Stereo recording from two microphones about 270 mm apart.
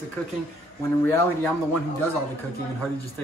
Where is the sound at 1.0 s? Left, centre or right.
Centre.